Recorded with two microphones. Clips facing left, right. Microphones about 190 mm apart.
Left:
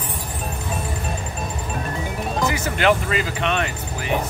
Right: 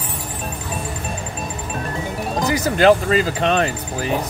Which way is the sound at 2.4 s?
35° right (ahead or behind).